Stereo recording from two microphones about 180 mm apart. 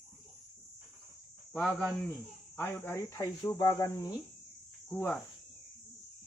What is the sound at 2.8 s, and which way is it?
Speech, 15° left (ahead or behind).